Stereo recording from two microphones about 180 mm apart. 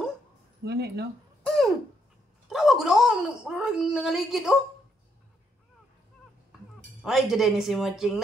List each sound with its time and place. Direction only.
0.7 s speech: 65° right (ahead or behind)
1.4 s a sound: 5° left (ahead or behind)
2.5 s speech: centre (ahead or behind)
7.0 s speech: centre (ahead or behind)